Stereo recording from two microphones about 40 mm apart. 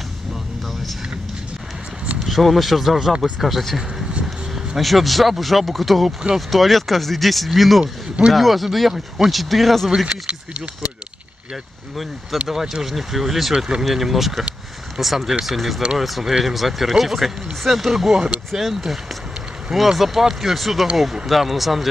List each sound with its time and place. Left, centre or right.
2.1 s speech: centre
10.0 s speech: right
12.4 s speech: centre